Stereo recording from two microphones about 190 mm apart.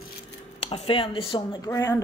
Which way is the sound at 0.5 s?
35° left (ahead or behind).